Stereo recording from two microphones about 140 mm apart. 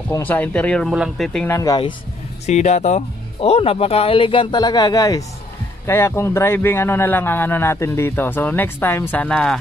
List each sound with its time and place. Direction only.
0.2 s speech: 10° left (ahead or behind)
1.5 s speech: 25° left (ahead or behind)
2.4 s speech: 55° left (ahead or behind)
3.3 s speech: 45° left (ahead or behind); by 9.6 s 5° left (ahead or behind)